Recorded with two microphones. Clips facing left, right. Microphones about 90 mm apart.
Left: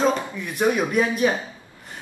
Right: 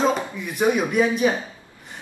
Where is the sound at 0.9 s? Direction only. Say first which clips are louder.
Right 1 dB; centre (ahead or behind).